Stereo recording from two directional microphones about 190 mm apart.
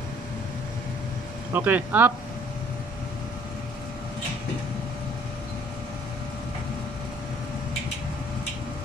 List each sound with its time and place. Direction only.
1.5 s speech: 10° right (ahead or behind)